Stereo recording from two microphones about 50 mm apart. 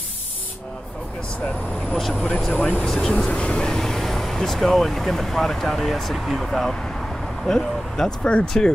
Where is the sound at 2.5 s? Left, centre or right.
Centre.